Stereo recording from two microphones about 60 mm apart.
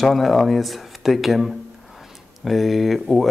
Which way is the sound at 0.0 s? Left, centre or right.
Centre.